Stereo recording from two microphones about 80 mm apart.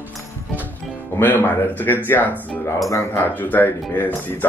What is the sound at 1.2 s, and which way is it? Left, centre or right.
Speech, left.